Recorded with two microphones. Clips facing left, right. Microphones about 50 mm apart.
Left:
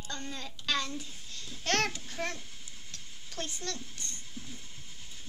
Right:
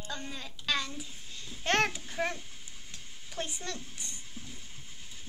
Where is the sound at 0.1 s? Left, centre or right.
Centre.